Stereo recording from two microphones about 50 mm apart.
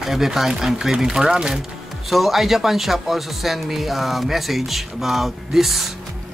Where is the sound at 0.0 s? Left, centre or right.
Centre.